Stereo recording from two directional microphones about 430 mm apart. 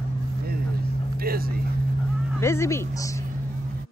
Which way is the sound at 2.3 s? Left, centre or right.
Centre.